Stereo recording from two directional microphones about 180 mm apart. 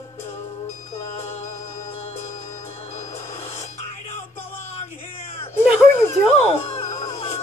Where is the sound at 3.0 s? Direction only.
40° left (ahead or behind).